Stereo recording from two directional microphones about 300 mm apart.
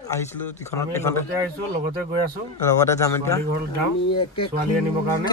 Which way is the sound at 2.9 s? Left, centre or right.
Centre.